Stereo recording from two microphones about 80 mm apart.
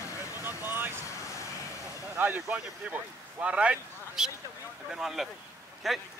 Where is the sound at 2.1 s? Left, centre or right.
Right; by 6.0 s centre.